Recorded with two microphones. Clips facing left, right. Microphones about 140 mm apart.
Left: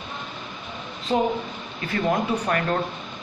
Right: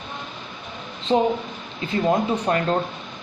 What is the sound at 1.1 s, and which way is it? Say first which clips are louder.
Speech: right 3 dB; 25° right (ahead or behind).